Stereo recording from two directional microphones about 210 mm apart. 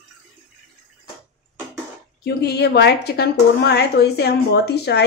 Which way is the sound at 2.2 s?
50° left (ahead or behind).